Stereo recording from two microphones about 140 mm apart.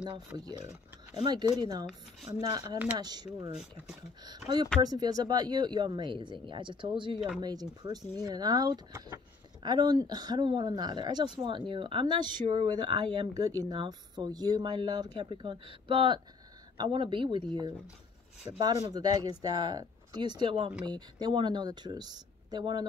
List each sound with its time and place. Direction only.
1.2 s speech: 30° right (ahead or behind)